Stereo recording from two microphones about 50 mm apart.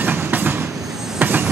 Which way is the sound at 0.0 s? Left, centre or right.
Right.